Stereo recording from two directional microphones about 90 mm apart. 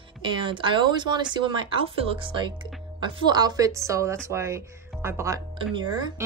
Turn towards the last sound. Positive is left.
turn(degrees=-55)  # may be behind; listen again after turning